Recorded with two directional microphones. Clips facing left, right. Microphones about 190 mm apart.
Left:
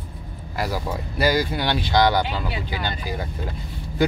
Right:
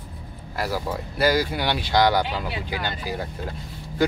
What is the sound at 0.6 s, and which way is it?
Speech, 5° right (ahead or behind).